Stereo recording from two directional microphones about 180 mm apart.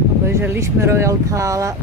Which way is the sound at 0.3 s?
15° right (ahead or behind).